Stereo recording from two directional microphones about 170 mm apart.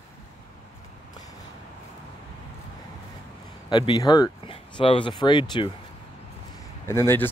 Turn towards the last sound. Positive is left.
turn(degrees=15)  # may be behind; listen again after turning